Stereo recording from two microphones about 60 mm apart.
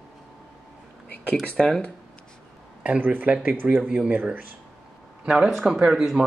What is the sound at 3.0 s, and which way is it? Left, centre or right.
Speech, right.